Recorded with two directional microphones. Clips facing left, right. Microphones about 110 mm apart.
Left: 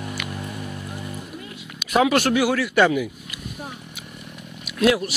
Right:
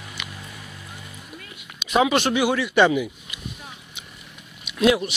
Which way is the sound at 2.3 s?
15° right (ahead or behind).